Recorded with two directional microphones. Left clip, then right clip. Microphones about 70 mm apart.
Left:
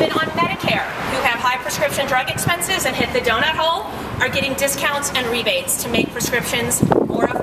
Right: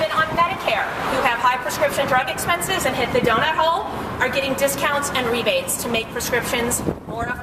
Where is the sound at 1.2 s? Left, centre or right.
Centre.